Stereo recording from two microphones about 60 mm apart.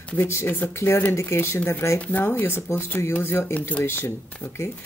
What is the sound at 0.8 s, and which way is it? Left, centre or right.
Speech, left.